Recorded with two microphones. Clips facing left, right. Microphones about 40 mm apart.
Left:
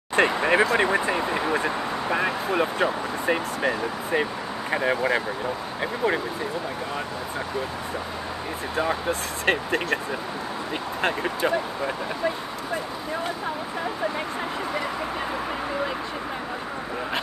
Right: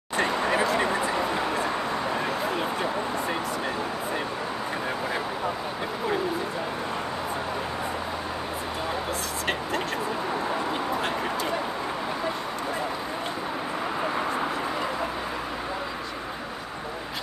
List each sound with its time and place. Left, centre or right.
0.1 s speech: left
0.9 s vehicle: left
2.8 s speech: left
9.5 s speech: left
11.0 s speech: left